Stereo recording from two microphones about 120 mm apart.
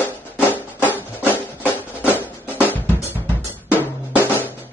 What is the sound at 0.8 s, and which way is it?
Music, 15° left (ahead or behind).